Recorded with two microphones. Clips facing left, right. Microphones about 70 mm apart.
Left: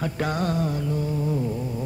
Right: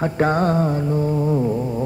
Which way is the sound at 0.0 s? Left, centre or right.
Right.